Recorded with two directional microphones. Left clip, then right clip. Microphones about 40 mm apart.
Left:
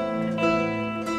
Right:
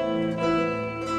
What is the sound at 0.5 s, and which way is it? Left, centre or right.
Music, left.